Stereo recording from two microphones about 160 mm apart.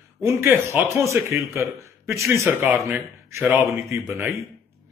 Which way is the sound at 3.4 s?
15° right (ahead or behind).